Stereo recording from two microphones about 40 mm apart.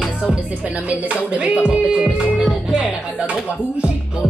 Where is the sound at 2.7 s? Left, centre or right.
Right.